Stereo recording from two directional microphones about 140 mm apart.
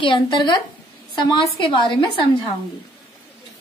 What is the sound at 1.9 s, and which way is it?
Speech, 35° left (ahead or behind).